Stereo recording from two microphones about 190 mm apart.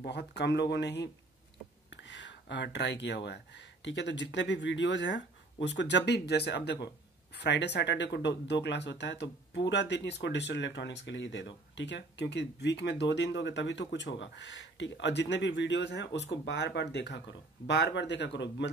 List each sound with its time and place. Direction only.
0.0 s speech: 60° left (ahead or behind)
1.9 s a sound: 70° left (ahead or behind)
3.3 s speech: 70° left (ahead or behind)